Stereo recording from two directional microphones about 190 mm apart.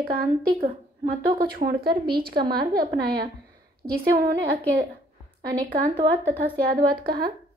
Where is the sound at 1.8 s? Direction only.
55° right (ahead or behind).